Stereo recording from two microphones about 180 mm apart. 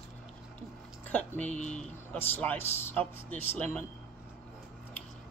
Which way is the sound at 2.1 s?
10° left (ahead or behind).